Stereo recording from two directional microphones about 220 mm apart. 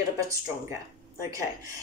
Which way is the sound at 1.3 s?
15° right (ahead or behind).